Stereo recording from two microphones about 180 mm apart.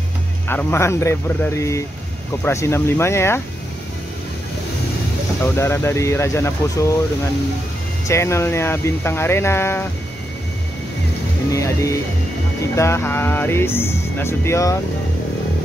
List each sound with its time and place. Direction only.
0.5 s speech: 10° left (ahead or behind)
5.4 s speech: 15° left (ahead or behind)
8.1 s speech: 15° left (ahead or behind)
11.5 s speech: 15° left (ahead or behind)